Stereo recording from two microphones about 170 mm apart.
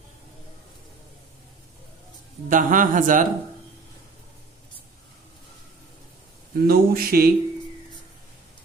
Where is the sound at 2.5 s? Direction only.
50° right (ahead or behind).